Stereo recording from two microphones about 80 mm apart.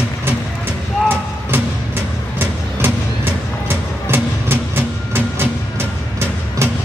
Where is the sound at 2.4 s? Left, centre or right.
Right.